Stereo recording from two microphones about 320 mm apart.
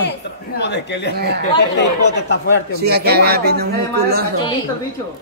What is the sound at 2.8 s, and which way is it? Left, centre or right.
A woman's voice, right.